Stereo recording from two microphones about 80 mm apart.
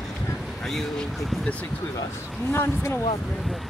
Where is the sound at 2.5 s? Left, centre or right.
Left.